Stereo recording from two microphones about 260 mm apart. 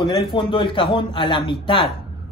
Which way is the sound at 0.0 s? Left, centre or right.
Centre.